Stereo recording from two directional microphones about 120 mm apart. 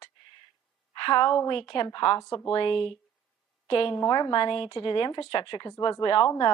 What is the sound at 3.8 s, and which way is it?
A woman's voice, 25° left (ahead or behind).